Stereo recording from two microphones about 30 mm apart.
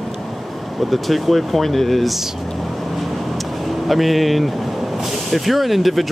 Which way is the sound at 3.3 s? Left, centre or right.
Centre.